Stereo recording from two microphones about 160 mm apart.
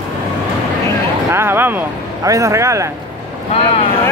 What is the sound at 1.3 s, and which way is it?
Speech, 15° right (ahead or behind).